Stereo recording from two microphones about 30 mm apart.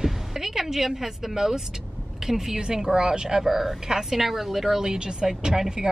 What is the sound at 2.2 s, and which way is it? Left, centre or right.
A woman's voice, centre.